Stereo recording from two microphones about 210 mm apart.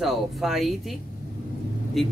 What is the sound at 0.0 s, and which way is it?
Speech, centre (ahead or behind).